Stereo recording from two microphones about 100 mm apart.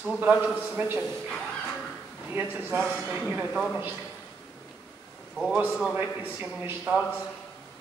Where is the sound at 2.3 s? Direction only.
20° right (ahead or behind).